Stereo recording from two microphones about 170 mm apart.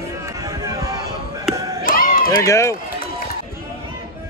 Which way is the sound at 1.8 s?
55° left (ahead or behind).